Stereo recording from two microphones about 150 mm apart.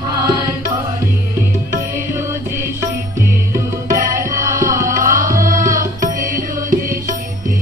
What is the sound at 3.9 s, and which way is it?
Tabla, 60° right (ahead or behind).